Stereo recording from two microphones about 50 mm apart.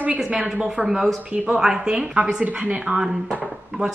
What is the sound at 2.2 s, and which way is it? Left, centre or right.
Speech, right.